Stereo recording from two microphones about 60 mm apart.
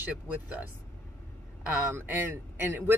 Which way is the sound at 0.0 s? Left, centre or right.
Right.